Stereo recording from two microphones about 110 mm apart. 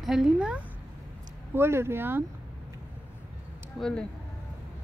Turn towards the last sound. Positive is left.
turn(degrees=5)  # may be behind; listen again after turning